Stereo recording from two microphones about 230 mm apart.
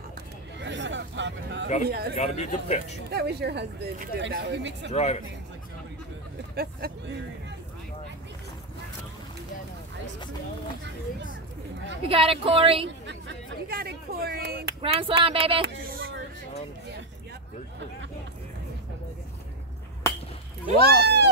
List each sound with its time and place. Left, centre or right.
0.6 s a sound: right
1.9 s speech: right
2.1 s speech: left
3.1 s speech: right
4.9 s speech: left
6.5 s speech: right
12.1 s speech: right
13.0 s speech: right
14.8 s speech: right
15.6 s speech: right
20.1 s whip: centre
20.8 s speech: right